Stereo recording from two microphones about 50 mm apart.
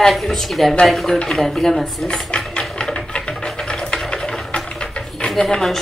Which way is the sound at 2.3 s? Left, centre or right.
Left.